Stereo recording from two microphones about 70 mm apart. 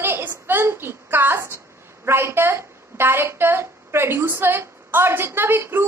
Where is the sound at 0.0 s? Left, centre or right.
Right.